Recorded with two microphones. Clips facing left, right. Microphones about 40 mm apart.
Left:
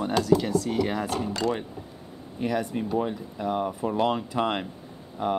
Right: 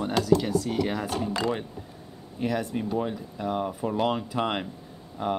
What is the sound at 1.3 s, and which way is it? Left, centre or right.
Speech, centre.